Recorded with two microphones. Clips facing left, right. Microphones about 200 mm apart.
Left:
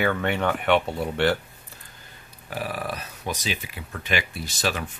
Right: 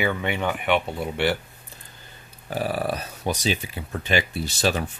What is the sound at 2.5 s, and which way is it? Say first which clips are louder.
Speech: right 5 dB; 30° right (ahead or behind).